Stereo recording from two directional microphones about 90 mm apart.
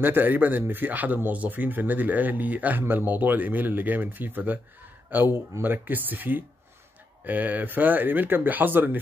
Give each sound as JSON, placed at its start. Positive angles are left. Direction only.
{"t": 0.0, "sound": "speech", "side_deg": -20}